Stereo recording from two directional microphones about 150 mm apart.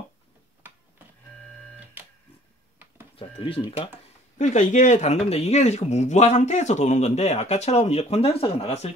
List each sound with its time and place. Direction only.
3.2 s speech: 40° left (ahead or behind)
4.4 s speech: 55° left (ahead or behind)